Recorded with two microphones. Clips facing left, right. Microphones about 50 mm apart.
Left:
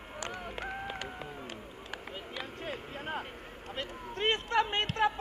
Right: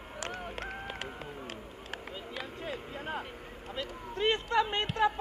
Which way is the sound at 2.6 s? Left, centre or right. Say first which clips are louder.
Right 1 dB; left.